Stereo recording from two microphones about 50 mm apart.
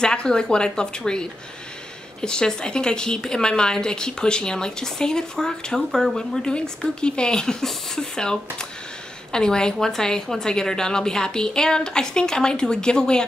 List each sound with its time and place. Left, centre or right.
0.0 s a woman's voice: centre
2.2 s a woman's voice: centre